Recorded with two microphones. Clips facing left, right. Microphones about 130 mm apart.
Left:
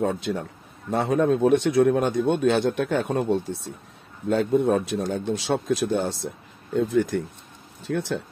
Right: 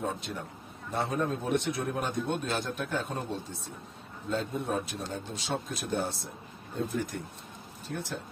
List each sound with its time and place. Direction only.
0.0 s a man's voice: 90° left